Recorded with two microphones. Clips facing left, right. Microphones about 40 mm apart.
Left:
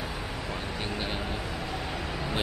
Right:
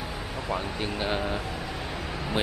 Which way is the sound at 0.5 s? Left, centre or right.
Centre.